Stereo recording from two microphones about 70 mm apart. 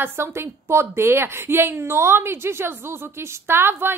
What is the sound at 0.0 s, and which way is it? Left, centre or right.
A woman's voice, right.